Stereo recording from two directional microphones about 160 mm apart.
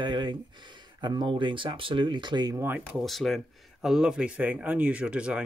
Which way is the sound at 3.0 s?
Centre (ahead or behind).